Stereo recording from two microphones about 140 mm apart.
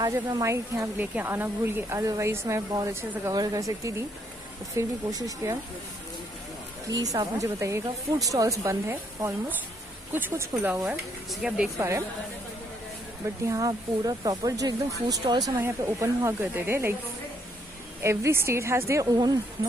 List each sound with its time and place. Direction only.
0.0 s speech: 25° right (ahead or behind)
6.9 s a woman's voice: 25° right (ahead or behind); by 11.7 s 5° right (ahead or behind)
13.5 s speech: 25° right (ahead or behind)
18.0 s speech: 20° right (ahead or behind)